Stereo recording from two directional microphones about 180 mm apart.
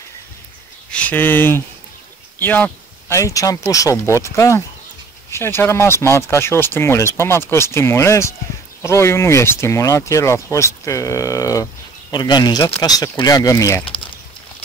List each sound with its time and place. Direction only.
0.9 s speech: 10° left (ahead or behind)